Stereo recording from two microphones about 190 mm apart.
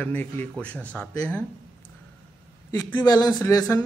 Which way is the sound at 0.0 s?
10° left (ahead or behind).